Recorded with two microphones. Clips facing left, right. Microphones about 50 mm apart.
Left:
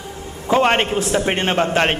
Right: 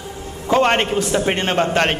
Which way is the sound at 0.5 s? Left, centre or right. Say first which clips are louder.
Even; centre.